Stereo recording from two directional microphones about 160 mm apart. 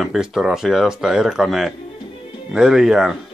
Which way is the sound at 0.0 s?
5° right (ahead or behind).